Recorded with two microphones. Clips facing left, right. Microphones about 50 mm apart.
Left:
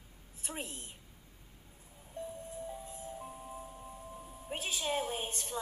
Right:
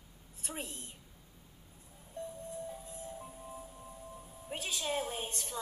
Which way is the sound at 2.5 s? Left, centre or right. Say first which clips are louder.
Even; centre.